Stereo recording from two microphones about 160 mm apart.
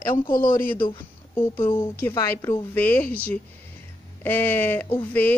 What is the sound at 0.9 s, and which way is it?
A woman's voice, 20° left (ahead or behind).